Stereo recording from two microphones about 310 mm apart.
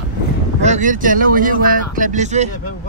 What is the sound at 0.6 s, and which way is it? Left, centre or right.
Speech, right.